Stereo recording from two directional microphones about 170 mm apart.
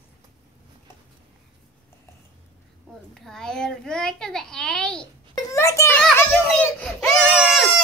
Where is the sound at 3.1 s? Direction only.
Centre (ahead or behind).